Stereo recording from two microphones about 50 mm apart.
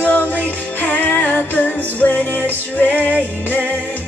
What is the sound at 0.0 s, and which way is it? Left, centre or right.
Music, left.